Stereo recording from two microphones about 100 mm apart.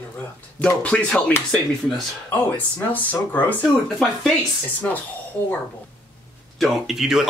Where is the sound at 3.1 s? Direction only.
15° left (ahead or behind).